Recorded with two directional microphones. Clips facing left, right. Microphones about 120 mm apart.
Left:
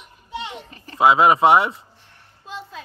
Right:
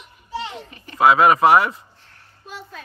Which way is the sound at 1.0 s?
25° left (ahead or behind).